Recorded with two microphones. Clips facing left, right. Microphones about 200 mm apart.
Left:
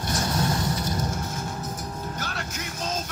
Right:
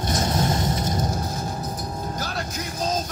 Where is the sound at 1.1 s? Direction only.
35° right (ahead or behind).